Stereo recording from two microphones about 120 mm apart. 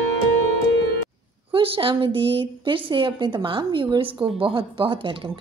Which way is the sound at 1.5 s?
45° right (ahead or behind).